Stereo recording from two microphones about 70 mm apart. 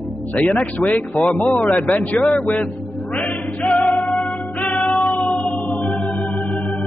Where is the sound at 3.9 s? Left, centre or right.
Centre.